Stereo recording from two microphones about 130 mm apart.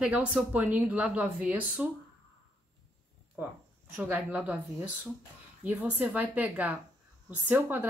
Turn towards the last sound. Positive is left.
turn(degrees=-15)  # may be behind; listen again after turning